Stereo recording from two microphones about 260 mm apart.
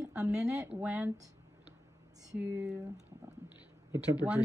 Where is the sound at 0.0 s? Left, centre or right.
Centre.